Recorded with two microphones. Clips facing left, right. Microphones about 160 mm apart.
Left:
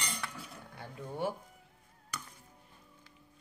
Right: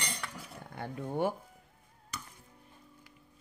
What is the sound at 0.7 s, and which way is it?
Speech, 55° right (ahead or behind).